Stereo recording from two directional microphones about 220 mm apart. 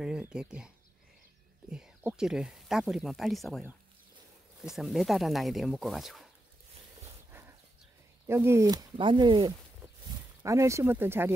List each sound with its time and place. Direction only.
0.0 s speech: 5° right (ahead or behind)
1.7 s speech: 5° right (ahead or behind)
8.3 s speech: 10° right (ahead or behind)